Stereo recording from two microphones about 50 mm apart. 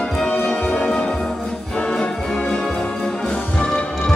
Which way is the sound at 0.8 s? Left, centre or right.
Left.